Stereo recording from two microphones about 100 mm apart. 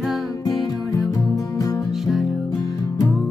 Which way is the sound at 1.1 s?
35° left (ahead or behind).